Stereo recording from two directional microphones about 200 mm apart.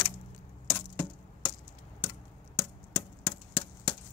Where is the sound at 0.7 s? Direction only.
15° left (ahead or behind).